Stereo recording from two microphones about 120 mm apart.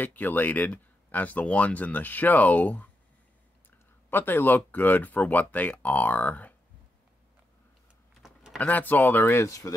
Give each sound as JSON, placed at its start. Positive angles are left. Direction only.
{"t": 0.0, "sound": "speech", "side_deg": 15}
{"t": 4.1, "sound": "speech", "side_deg": 15}
{"t": 8.5, "sound": "speech", "side_deg": 15}